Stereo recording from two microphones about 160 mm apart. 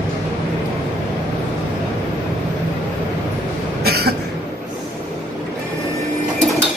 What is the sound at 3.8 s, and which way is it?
Cough, 80° right.